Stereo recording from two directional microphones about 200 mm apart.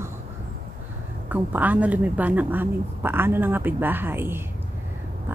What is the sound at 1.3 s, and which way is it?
A woman's voice, 10° right (ahead or behind).